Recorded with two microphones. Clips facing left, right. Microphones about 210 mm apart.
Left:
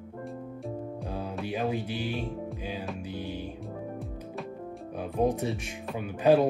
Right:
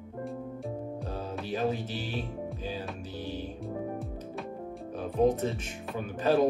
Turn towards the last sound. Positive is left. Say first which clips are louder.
# left 3 dB
turn(degrees=15)  # may be behind; listen again after turning